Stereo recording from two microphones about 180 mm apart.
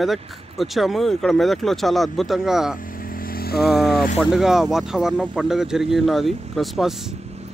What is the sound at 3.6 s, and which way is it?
Speech, centre (ahead or behind).